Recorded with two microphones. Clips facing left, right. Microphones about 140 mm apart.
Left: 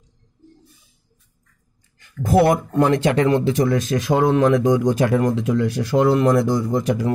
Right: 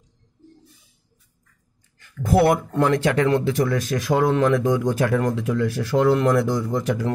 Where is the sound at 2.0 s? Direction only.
20° left (ahead or behind).